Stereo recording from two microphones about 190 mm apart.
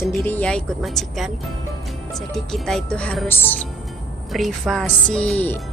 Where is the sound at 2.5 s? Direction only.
Centre (ahead or behind).